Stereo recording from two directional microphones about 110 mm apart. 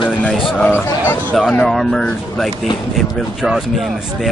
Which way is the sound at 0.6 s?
15° left (ahead or behind).